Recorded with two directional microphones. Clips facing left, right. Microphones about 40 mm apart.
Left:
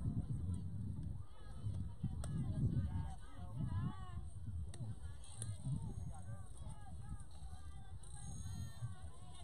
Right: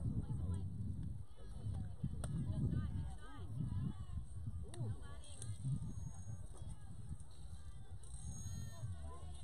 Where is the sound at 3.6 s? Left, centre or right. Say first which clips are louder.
Left 2 dB; left.